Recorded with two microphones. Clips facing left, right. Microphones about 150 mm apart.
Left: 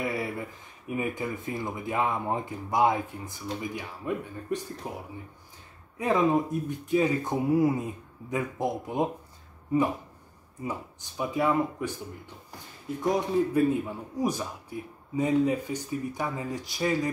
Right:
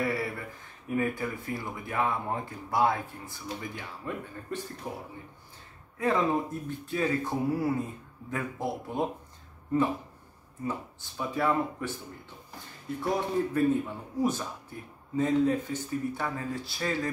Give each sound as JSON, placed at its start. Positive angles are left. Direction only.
{"t": 0.0, "sound": "speech", "side_deg": 20}
{"t": 10.6, "sound": "speech", "side_deg": 15}
{"t": 13.0, "sound": "speech", "side_deg": 15}